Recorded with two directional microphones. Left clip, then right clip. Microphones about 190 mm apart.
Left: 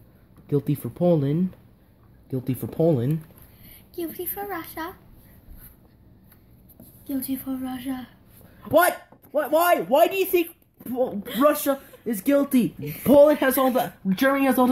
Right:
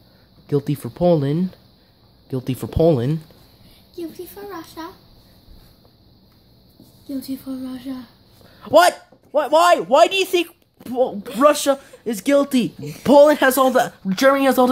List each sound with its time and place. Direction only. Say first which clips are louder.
0.5 s speech: right 4 dB; centre (ahead or behind)
2.2 s speech: right 4 dB; centre (ahead or behind)
4.0 s a child's voice: left 1 dB; 35° right (ahead or behind)
7.1 s a child's voice: right 1 dB; 40° right (ahead or behind)
9.3 s speech: right 6 dB; 5° left (ahead or behind)